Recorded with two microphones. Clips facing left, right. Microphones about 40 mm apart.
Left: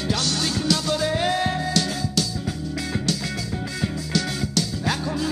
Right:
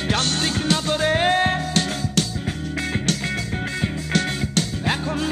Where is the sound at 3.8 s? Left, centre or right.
Right.